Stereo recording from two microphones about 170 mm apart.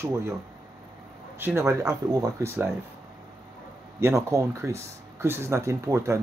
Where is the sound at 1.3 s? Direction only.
15° right (ahead or behind).